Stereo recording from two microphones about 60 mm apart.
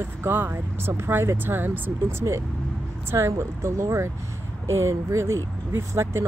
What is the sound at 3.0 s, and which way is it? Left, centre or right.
Speech, right.